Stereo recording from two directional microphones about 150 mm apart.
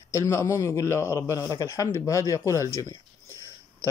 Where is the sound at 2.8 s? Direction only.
20° left (ahead or behind).